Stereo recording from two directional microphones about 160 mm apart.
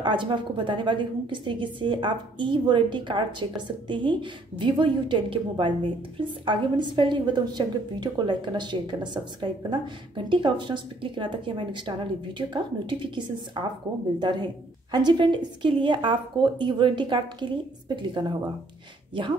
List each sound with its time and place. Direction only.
0.0 s a woman's voice: 30° right (ahead or behind)